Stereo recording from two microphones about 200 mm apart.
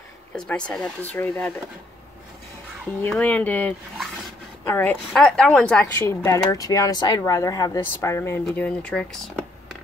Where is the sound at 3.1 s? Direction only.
5° left (ahead or behind).